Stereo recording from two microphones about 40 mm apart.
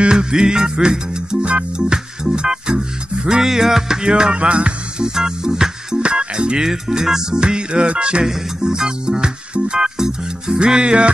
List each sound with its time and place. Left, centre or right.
0.0 s music: right